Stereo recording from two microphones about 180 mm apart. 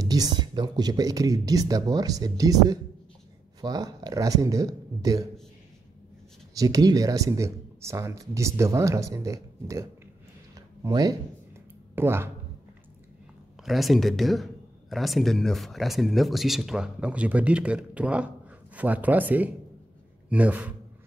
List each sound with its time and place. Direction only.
0.0 s speech: 20° right (ahead or behind)
6.5 s speech: 20° right (ahead or behind)
13.7 s speech: centre (ahead or behind)